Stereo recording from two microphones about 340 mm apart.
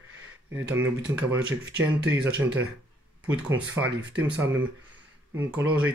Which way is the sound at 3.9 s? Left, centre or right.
Right.